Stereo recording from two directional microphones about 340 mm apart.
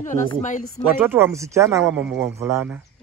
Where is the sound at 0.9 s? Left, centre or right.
Centre.